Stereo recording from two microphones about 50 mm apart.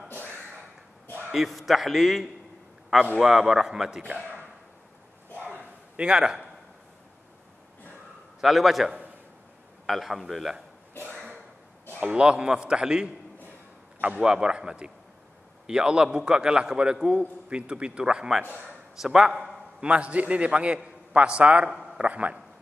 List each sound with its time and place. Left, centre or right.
1.3 s a man's voice: centre
4.0 s speech: right
5.4 s bow-wow: right
5.9 s a man's voice: centre
8.4 s a man's voice: centre
12.0 s a man's voice: centre
19.8 s a man's voice: right